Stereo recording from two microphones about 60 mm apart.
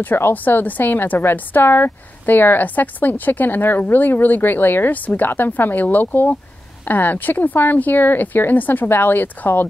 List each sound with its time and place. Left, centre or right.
0.0 s a woman's voice: left